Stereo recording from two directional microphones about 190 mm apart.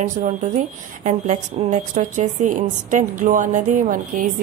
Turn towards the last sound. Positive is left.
turn(degrees=-45)  # may be behind; listen again after turning